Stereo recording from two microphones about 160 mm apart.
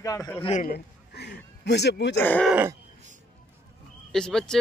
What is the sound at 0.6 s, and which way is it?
Speech, 80° left.